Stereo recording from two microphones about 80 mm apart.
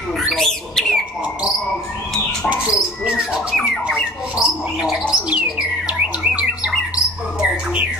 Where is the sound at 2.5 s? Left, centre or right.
Centre.